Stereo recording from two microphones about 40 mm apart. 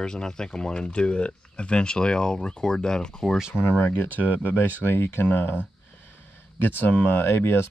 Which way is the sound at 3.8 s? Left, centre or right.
Left.